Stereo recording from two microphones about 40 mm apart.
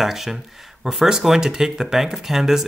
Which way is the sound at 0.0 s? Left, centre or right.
Centre.